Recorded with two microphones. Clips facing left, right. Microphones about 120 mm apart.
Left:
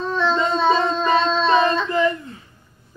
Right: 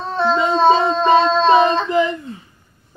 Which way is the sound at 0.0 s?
35° right (ahead or behind).